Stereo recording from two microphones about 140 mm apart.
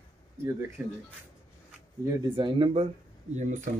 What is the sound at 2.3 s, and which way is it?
Speech, 35° right (ahead or behind).